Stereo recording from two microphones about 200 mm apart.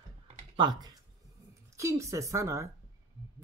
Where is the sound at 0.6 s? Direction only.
20° right (ahead or behind).